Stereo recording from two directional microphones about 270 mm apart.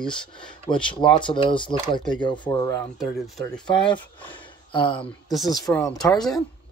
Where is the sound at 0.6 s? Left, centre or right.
Centre.